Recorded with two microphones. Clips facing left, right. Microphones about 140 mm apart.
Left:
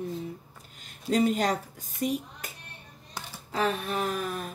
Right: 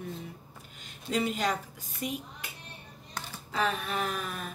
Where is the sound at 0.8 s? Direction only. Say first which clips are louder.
Left 6 dB; 45° left (ahead or behind).